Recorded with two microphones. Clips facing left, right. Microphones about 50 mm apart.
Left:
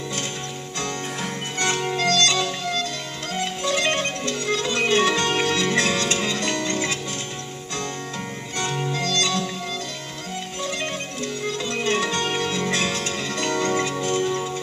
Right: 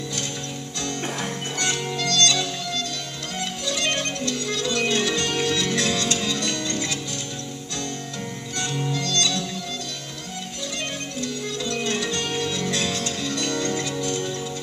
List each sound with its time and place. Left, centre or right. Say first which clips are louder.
1.6 s music: left 4 dB; left
8.5 s music: left 2 dB; left
11.4 s music: left 4 dB; left